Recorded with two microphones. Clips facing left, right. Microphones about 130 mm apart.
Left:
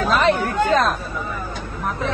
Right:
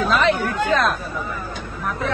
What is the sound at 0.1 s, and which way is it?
Speech, 40° left (ahead or behind).